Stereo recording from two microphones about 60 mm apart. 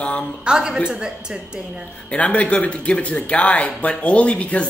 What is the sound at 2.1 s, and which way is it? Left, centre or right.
Speech, left.